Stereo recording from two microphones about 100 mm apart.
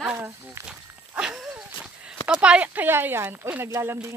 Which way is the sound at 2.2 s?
10° right (ahead or behind).